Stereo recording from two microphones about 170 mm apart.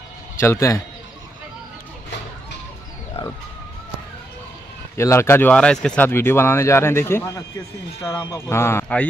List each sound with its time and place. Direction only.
0.4 s speech: 15° left (ahead or behind)
4.9 s speech: 15° left (ahead or behind)